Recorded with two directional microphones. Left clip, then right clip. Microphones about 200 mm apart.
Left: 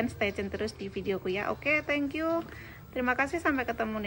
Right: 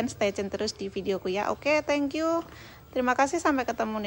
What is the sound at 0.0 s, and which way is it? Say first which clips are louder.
A woman's voice: right 3 dB; 15° right (ahead or behind).